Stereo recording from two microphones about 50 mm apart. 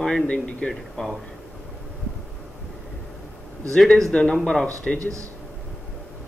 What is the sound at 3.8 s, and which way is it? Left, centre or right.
Speech, centre.